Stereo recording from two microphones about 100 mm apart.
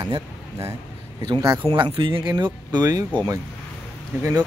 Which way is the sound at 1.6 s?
55° right (ahead or behind).